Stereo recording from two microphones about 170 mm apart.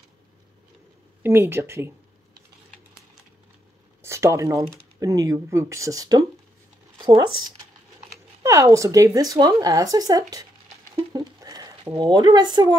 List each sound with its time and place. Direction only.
1.2 s speech: 15° right (ahead or behind)
4.0 s speech: 15° right (ahead or behind)
11.0 s a sound: 25° right (ahead or behind)
11.8 s speech: 30° right (ahead or behind)